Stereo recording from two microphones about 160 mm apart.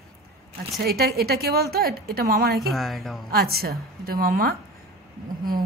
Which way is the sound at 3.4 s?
70° right (ahead or behind).